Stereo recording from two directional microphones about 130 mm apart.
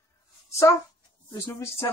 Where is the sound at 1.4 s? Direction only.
20° left (ahead or behind).